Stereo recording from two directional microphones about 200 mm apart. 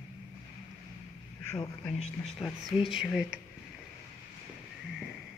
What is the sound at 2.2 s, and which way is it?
Speech, centre (ahead or behind).